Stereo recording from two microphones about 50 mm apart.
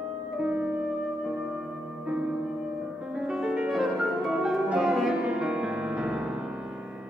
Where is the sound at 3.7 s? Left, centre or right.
Centre.